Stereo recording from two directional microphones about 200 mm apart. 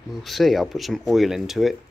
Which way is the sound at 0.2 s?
Centre (ahead or behind).